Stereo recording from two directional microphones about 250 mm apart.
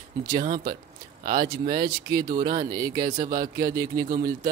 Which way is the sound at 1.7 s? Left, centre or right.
Centre.